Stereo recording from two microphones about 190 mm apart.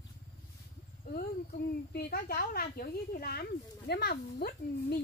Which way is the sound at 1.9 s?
55° left (ahead or behind).